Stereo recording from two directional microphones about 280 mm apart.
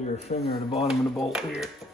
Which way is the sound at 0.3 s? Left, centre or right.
Left.